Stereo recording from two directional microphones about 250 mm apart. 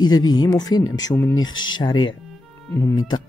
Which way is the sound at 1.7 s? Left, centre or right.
Centre.